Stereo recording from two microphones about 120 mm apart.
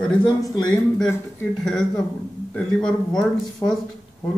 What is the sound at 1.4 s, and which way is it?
Speech, 5° left (ahead or behind).